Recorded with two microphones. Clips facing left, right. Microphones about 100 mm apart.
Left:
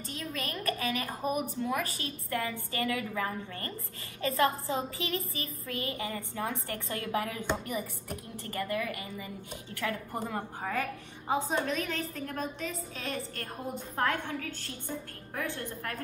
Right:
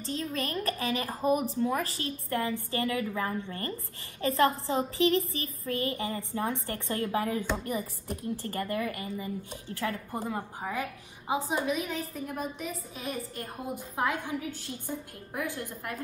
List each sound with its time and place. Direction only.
0.0 s a woman's voice: 30° right (ahead or behind)
10.1 s a woman's voice: 10° right (ahead or behind)